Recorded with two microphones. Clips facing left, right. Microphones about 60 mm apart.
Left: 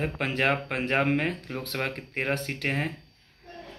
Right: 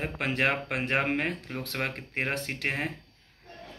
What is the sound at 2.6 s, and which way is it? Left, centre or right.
Speech, right.